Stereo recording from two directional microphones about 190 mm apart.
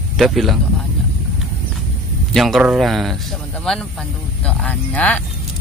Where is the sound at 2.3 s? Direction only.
Centre (ahead or behind).